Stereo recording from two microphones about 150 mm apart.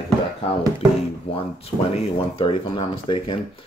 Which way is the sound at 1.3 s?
40° left (ahead or behind).